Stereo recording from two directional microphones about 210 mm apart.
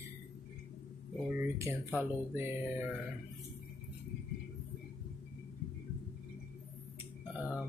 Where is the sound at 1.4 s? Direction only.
15° right (ahead or behind).